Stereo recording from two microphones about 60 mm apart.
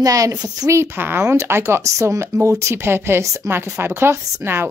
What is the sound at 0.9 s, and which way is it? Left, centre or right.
Speech, right.